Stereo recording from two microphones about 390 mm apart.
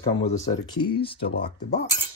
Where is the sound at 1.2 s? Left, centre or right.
Left.